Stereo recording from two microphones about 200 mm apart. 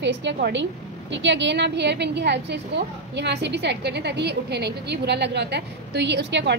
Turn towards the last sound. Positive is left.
turn(degrees=-60)  # may be behind; listen again after turning